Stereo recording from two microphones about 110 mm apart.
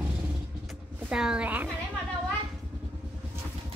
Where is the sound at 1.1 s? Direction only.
10° right (ahead or behind).